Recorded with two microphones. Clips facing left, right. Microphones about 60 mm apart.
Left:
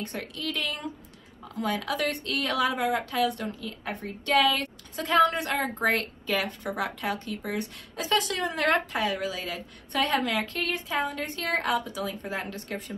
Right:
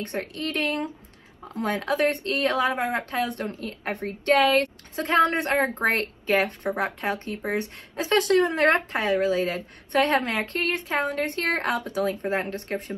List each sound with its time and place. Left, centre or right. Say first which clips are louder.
0.0 s a woman's voice: right 4 dB; right